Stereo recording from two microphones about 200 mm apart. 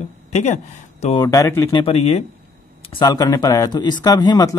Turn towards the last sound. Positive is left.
turn(degrees=20)  # may be behind; listen again after turning